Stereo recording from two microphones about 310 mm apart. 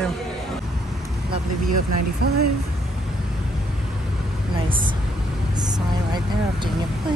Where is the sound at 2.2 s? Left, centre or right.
Right.